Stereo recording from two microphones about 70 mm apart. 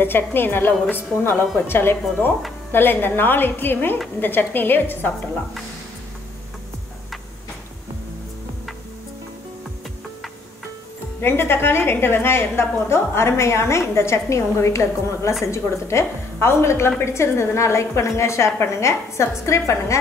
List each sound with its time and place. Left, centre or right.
0.0 s a woman's voice: left
11.1 s a woman's voice: left